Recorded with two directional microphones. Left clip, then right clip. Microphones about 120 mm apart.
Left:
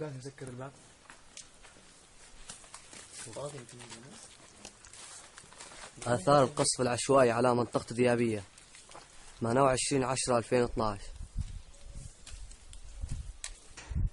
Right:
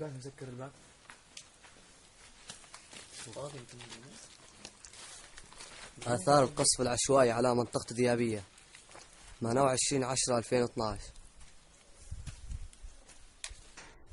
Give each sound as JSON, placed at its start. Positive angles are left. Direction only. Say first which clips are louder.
{"t": 0.2, "sound": "speech", "louder": "left 1 dB", "side_deg": -50}
{"t": 2.4, "sound": "horse", "louder": "left 1 dB", "side_deg": -5}
{"t": 3.4, "sound": "speech", "louder": "left 2 dB", "side_deg": -15}
{"t": 6.0, "sound": "speech", "louder": "left 1 dB", "side_deg": -5}